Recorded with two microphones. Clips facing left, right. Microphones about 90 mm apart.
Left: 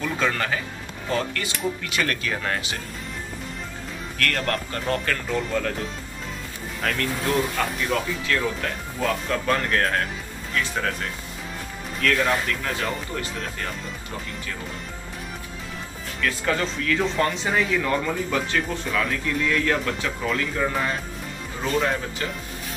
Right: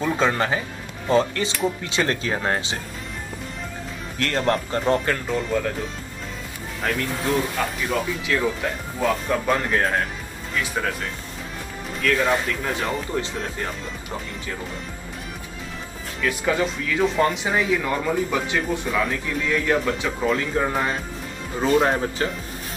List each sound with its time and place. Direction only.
0.0 s speech: 25° right (ahead or behind)
4.2 s speech: 20° right (ahead or behind)
5.3 s speech: 5° right (ahead or behind)
6.8 s speech: 10° right (ahead or behind)
12.0 s speech: 10° right (ahead or behind)
16.2 s speech: 10° right (ahead or behind)
20.2 s speech: 25° right (ahead or behind)